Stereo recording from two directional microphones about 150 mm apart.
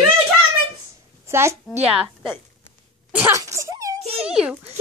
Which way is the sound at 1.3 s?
15° right (ahead or behind).